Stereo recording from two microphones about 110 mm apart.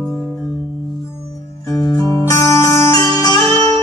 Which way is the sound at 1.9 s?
30° left (ahead or behind).